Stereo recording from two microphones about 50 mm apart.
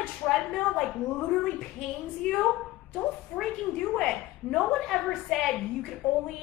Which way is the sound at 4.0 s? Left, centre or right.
Centre.